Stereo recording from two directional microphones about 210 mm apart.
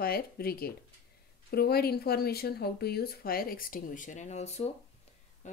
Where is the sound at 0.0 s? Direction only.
45° left (ahead or behind).